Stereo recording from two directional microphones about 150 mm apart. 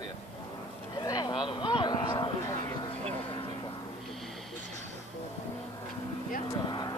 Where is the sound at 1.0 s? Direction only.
25° left (ahead or behind).